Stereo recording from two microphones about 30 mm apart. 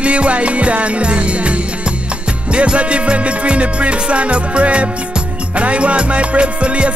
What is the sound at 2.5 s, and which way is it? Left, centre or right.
Music, right.